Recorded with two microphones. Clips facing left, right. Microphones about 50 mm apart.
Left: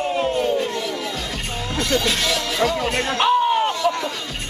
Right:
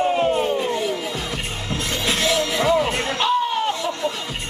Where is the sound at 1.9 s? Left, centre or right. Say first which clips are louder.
Right 1 dB; right.